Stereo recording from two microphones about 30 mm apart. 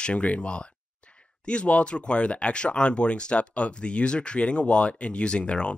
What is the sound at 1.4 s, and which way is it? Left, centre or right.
Speech, left.